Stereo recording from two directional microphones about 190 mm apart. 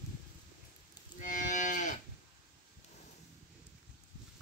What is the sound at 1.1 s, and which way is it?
Cattle, 40° left (ahead or behind).